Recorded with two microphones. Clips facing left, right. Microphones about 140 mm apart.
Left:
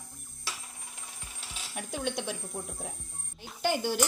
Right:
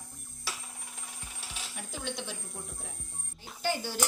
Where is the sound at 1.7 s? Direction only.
60° left (ahead or behind).